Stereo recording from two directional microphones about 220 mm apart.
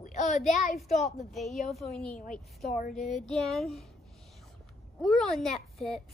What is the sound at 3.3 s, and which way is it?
Speech, centre (ahead or behind).